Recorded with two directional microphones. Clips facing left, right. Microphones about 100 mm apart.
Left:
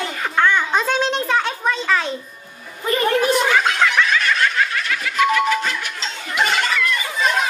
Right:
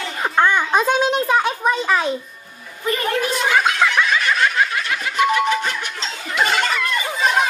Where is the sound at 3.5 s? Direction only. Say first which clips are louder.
Even; 15° right (ahead or behind).